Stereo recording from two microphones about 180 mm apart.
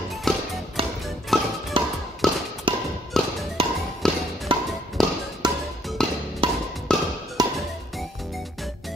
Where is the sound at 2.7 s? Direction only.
25° right (ahead or behind).